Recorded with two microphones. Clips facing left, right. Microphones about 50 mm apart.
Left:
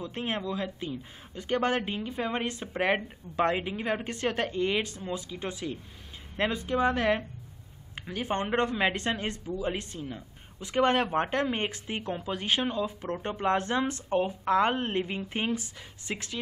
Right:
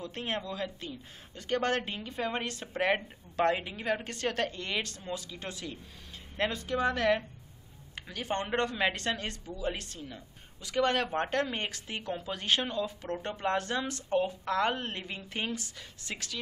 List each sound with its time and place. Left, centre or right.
0.1 s speech: centre